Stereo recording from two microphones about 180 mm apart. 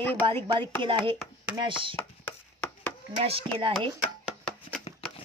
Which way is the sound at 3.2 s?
30° right (ahead or behind).